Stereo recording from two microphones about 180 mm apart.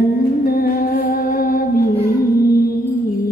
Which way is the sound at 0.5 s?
55° left (ahead or behind).